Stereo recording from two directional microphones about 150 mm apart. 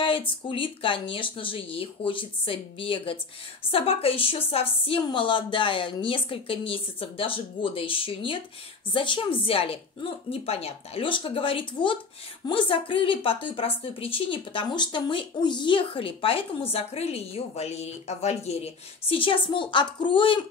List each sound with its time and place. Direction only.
0.5 s a woman's voice: 35° left (ahead or behind)